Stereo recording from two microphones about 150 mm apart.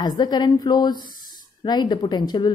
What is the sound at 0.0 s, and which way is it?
Speech, 25° left (ahead or behind).